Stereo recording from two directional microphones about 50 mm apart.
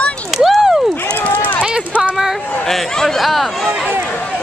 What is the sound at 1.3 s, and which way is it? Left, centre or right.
Run, left.